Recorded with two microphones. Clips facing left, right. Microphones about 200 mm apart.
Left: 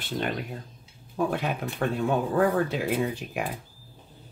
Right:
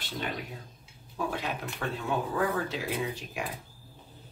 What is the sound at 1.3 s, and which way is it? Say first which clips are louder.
Speech: left 5 dB; 55° left (ahead or behind).